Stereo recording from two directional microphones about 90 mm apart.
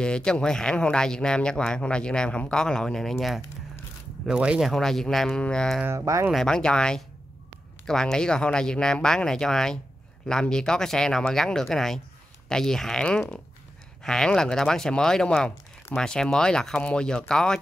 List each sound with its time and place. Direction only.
0.0 s speech: 10° left (ahead or behind); by 4.6 s 10° right (ahead or behind)
4.6 s speech: 5° left (ahead or behind)
5.9 s speech: 35° right (ahead or behind)
6.3 s speech: 5° left (ahead or behind)